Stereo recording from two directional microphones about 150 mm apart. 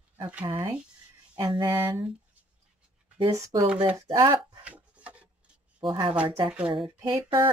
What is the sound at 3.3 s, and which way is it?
Speech, 20° right (ahead or behind).